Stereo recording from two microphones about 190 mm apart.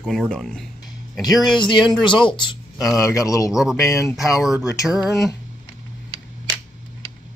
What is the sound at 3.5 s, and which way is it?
Speech, 5° right (ahead or behind).